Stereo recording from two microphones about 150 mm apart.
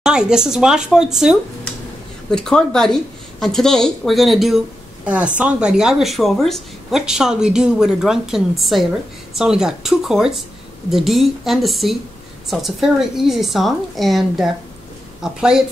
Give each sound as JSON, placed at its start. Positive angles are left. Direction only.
{"t": 0.0, "sound": "a woman's voice", "side_deg": -5}